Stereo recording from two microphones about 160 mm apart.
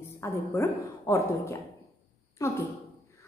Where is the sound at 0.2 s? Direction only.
20° left (ahead or behind).